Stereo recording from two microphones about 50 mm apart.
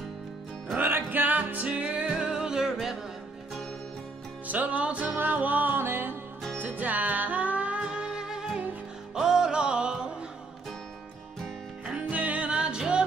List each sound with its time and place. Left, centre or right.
0.7 s music: right; by 3.0 s centre
4.5 s music: right
5.8 s music: right
6.6 s music: right; by 10.1 s centre
12.1 s music: right